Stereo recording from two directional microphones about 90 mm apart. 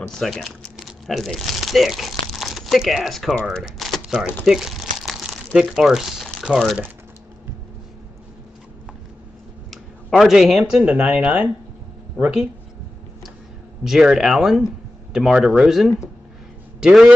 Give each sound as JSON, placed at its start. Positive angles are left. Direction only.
{"t": 0.1, "sound": "speech", "side_deg": 0}
{"t": 3.6, "sound": "typewriter", "side_deg": 0}
{"t": 4.1, "sound": "speech", "side_deg": -10}
{"t": 9.7, "sound": "a sound", "side_deg": 0}
{"t": 10.6, "sound": "speech", "side_deg": -10}
{"t": 13.8, "sound": "speech", "side_deg": -5}